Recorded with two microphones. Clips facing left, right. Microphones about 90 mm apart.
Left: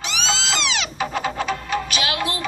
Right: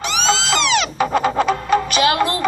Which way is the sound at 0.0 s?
50° right (ahead or behind).